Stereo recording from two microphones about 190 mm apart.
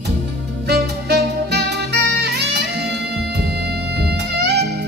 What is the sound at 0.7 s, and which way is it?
Saxophone, 60° right (ahead or behind).